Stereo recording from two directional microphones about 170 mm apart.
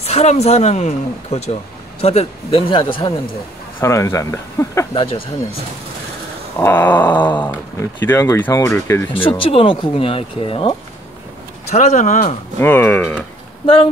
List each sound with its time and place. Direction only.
0.0 s speech: 40° left (ahead or behind)
3.8 s speech: 15° left (ahead or behind)
4.9 s speech: 30° left (ahead or behind)
6.6 s speech: 10° left (ahead or behind)
9.4 s speech: 30° left (ahead or behind)
11.7 s speech: 45° left (ahead or behind)
12.5 s speech: 10° left (ahead or behind)